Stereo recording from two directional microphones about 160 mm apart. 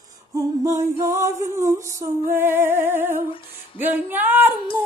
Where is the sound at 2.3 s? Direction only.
15° right (ahead or behind).